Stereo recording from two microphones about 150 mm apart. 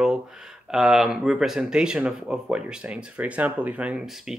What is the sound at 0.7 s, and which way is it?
Speech, 5° right (ahead or behind).